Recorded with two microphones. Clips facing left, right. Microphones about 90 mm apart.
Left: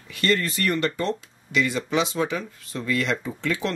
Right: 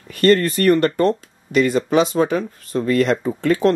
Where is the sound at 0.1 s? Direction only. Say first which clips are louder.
Right 9 dB; 50° right (ahead or behind).